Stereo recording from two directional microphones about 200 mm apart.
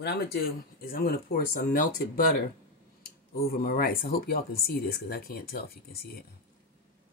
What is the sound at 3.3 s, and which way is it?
Speech, 50° left (ahead or behind).